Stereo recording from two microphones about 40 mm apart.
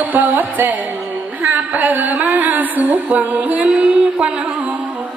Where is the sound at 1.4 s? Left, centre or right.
Right.